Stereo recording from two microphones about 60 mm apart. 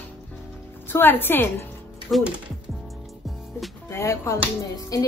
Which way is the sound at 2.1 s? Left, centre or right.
Centre.